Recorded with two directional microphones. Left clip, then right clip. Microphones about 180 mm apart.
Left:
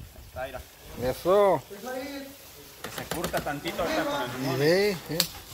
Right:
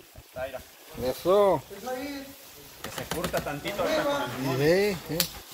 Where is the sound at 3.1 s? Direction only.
25° left (ahead or behind).